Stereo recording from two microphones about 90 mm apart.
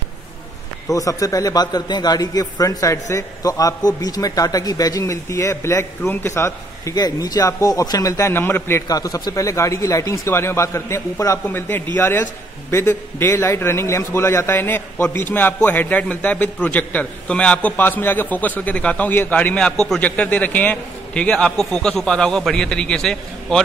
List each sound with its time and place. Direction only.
0.8 s a man's voice: 40° left (ahead or behind)
7.0 s a man's voice: 45° left (ahead or behind)
8.4 s a man's voice: 25° left (ahead or behind)
8.8 s a man's voice: 40° left (ahead or behind)
11.4 s a man's voice: 20° left (ahead or behind)